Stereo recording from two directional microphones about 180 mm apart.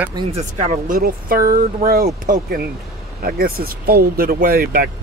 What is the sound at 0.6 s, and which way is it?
Speech, 40° right (ahead or behind).